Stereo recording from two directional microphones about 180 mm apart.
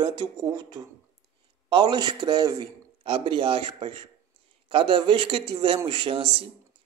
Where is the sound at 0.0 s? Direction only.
25° right (ahead or behind).